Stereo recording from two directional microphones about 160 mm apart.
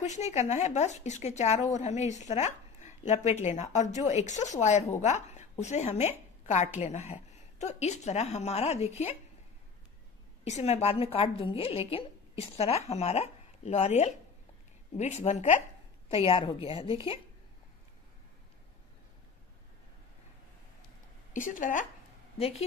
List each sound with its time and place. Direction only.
0.0 s a woman's voice: 45° left (ahead or behind)
10.4 s a woman's voice: 40° left (ahead or behind)
16.1 s a woman's voice: 35° left (ahead or behind)
21.3 s a woman's voice: 55° left (ahead or behind)
22.4 s a woman's voice: 40° left (ahead or behind)